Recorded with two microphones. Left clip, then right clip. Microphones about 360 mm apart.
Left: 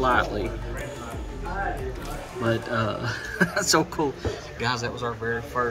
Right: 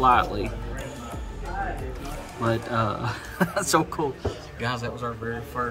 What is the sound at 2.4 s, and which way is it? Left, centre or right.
Speech, right.